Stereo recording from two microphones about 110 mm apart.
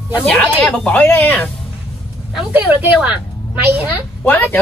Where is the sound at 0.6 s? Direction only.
10° left (ahead or behind).